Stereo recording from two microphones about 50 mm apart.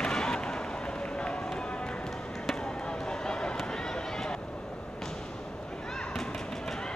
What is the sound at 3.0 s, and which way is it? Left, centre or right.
Run, centre.